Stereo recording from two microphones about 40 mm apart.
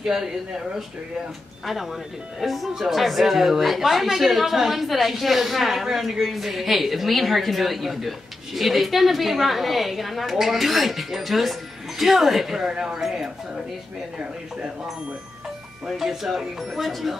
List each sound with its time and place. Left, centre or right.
0.0 s a woman's voice: centre
12.6 s speech: centre
15.9 s a woman's voice: centre